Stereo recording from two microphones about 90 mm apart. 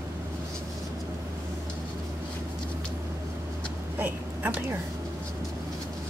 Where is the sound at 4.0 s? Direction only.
20° right (ahead or behind).